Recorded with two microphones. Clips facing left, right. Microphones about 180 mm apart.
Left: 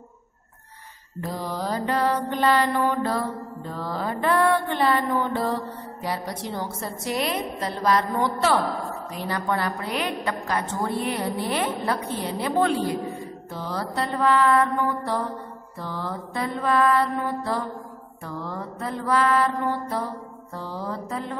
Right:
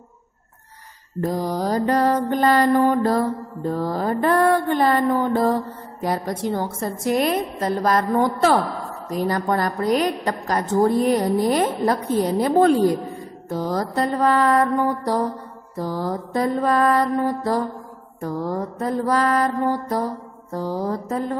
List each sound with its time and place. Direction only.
1.2 s mantra: 45° right (ahead or behind)